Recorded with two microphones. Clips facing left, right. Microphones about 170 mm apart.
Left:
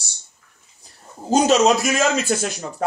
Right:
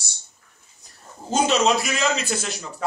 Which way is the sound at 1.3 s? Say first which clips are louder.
Left 4 dB; 40° left (ahead or behind).